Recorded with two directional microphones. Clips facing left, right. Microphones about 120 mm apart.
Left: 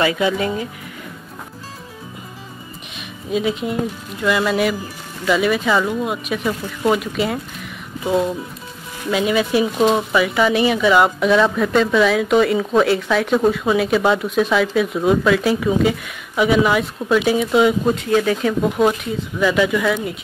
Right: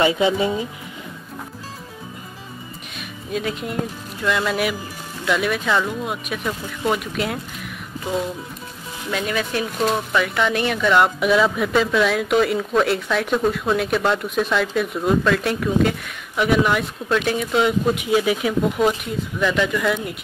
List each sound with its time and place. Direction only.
0.0 s speech: 25° right (ahead or behind)
3.3 s speech: centre (ahead or behind)
8.0 s speech: 15° left (ahead or behind)
17.9 s speech: 10° right (ahead or behind)
19.0 s speech: 5° left (ahead or behind)